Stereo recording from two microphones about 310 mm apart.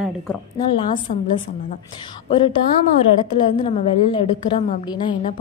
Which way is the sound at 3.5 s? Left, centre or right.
Centre.